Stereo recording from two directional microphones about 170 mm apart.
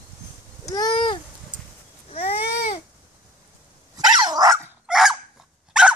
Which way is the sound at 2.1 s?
35° left (ahead or behind).